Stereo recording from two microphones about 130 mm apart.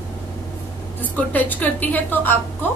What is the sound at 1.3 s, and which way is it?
A woman's voice, 15° left (ahead or behind).